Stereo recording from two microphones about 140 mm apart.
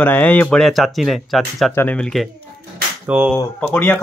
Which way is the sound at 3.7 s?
15° left (ahead or behind).